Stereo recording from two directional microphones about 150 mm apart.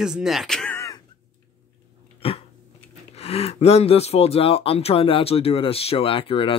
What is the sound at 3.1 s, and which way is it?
Speech, 40° left (ahead or behind).